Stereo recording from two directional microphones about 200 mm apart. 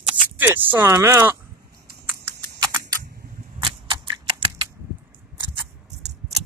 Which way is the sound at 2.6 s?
15° right (ahead or behind).